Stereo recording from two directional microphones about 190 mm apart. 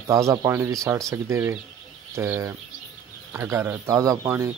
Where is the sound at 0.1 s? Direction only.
15° right (ahead or behind).